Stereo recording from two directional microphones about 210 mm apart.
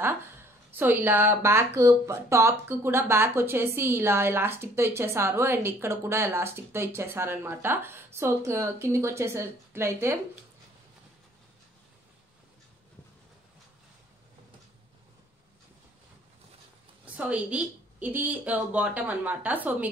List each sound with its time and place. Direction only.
0.7 s speech: 10° right (ahead or behind)
17.2 s speech: 5° right (ahead or behind)